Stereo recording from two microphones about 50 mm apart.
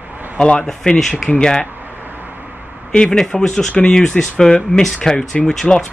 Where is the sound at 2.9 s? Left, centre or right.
Centre.